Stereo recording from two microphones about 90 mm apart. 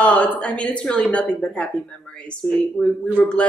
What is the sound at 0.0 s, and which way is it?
Speech, 15° left (ahead or behind).